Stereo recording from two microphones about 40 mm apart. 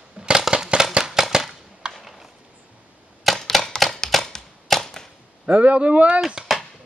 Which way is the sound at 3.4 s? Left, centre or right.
Centre.